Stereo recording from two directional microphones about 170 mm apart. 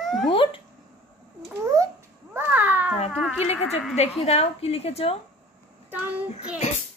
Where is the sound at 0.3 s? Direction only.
30° left (ahead or behind).